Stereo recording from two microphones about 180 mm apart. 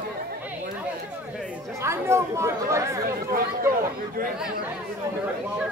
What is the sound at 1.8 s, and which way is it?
Speech, 15° right (ahead or behind).